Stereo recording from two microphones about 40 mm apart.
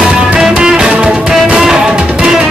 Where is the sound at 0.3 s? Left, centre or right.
Right.